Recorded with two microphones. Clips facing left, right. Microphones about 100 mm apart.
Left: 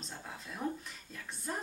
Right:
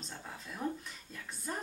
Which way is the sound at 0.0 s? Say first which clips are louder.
Even; centre (ahead or behind).